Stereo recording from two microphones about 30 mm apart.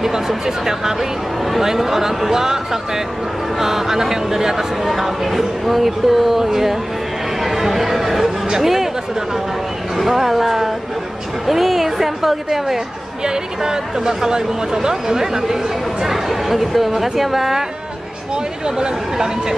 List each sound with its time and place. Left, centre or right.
0.5 s speech: centre
7.4 s music: centre
8.6 s speech: centre
13.2 s speech: right
18.3 s speech: right